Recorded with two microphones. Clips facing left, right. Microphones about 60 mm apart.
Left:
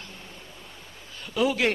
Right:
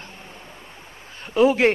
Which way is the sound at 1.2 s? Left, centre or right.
Right.